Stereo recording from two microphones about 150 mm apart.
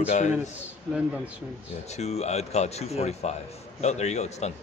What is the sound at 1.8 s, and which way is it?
Speech, 45° left (ahead or behind).